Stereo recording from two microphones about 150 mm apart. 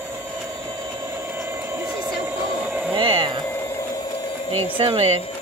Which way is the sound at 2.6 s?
10° right (ahead or behind).